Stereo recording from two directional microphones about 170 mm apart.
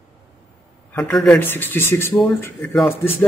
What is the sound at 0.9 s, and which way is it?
Speech, 5° left (ahead or behind).